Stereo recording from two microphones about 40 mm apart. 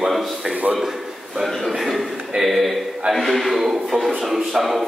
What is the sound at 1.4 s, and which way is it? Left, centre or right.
A man's voice, centre.